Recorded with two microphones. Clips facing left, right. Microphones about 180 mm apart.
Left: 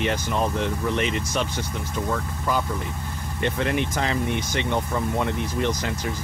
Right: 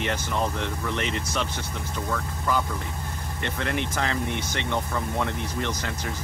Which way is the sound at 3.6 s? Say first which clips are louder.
Left 1 dB; 20° left (ahead or behind).